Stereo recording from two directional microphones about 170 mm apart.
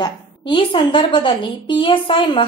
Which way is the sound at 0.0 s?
30° left (ahead or behind).